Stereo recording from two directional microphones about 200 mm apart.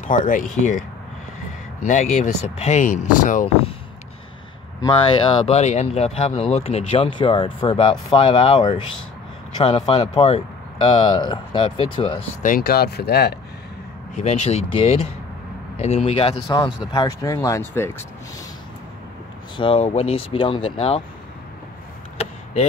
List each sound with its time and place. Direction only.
0.1 s speech: 40° left (ahead or behind)
1.9 s speech: 35° left (ahead or behind)
4.8 s speech: 25° left (ahead or behind)
12.4 s speech: 45° left (ahead or behind)
14.1 s speech: 35° left (ahead or behind); by 18.0 s 10° left (ahead or behind)
19.5 s speech: 25° left (ahead or behind)
22.2 s a sound: 35° left (ahead or behind)